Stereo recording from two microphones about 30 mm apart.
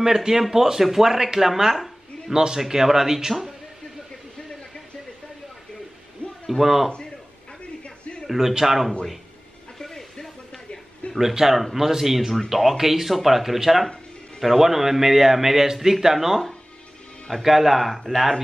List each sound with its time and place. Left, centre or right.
0.0 s a man's voice: centre
1.1 s a man's voice: centre
6.4 s a man's voice: centre
8.3 s a man's voice: centre
9.8 s a sound: centre
11.1 s a man's voice: centre